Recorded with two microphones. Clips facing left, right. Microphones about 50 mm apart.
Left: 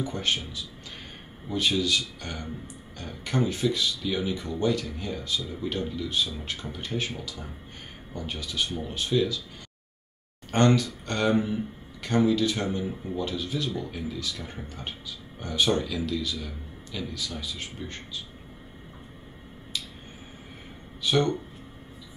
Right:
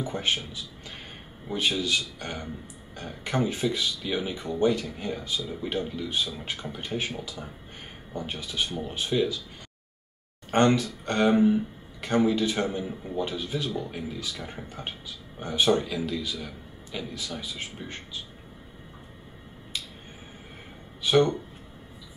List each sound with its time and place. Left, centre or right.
0.0 s speech: centre
8.1 s speech: right
10.5 s speech: right
21.0 s speech: centre